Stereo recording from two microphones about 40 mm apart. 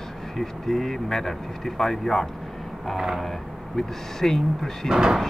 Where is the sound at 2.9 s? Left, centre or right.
Centre.